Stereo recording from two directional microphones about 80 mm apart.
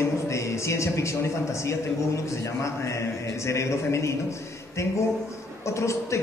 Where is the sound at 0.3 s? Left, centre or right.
Left.